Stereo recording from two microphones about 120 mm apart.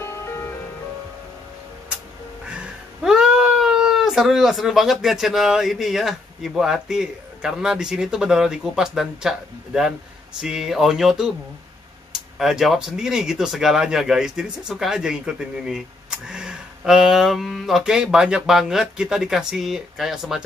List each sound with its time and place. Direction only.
0.0 s music: 20° left (ahead or behind)
2.4 s speech: 5° right (ahead or behind)